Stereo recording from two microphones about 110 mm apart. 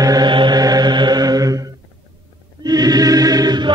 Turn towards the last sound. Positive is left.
turn(degrees=-40)  # may be behind; listen again after turning